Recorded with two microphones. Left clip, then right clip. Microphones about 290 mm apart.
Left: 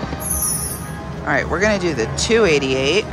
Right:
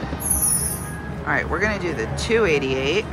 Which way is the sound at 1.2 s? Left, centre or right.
Centre.